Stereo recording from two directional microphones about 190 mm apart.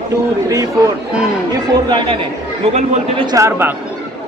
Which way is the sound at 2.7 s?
35° right (ahead or behind).